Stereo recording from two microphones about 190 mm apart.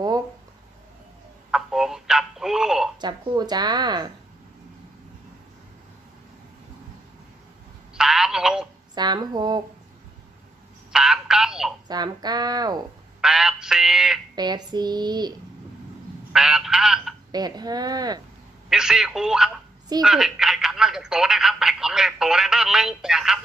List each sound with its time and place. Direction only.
1.5 s telephone: centre (ahead or behind)
3.0 s speech: 20° right (ahead or behind)
7.9 s telephone: 5° right (ahead or behind)
8.9 s speech: 20° right (ahead or behind)
10.9 s telephone: 5° right (ahead or behind)
11.9 s speech: 20° right (ahead or behind)
13.2 s speech: 5° right (ahead or behind)
14.3 s speech: 20° right (ahead or behind)
16.3 s speech: 5° right (ahead or behind)
17.3 s speech: 20° right (ahead or behind)
18.7 s speech: 5° right (ahead or behind)